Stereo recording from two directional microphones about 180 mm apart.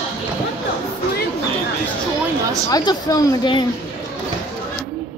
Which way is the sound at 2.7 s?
20° left (ahead or behind).